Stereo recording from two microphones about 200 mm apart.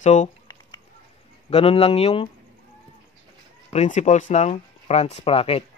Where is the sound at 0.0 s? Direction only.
35° left (ahead or behind).